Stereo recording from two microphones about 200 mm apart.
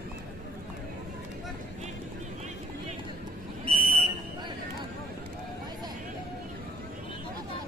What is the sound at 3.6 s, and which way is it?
Buzzer, 30° right (ahead or behind).